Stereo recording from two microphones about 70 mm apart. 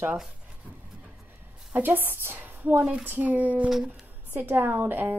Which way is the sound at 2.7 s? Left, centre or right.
Centre.